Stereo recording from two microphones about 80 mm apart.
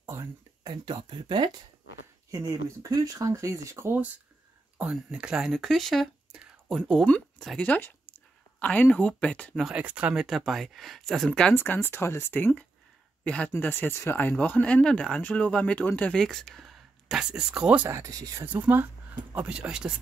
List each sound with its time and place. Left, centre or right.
0.0 s a sound: right
0.7 s speech: right
2.3 s speech: right
4.7 s speech: centre
9.8 s speech: centre
10.2 s speech: centre
11.5 s speech: left
13.2 s speech: centre
14.4 s speech: centre
17.8 s speech: right
18.4 s speech: right